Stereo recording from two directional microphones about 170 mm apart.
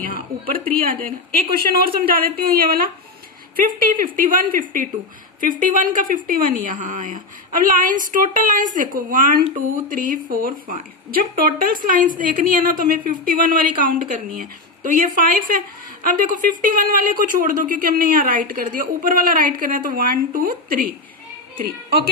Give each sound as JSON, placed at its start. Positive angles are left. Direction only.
{"t": 0.3, "sound": "a woman's voice", "side_deg": -60}
{"t": 1.7, "sound": "a woman's voice", "side_deg": -60}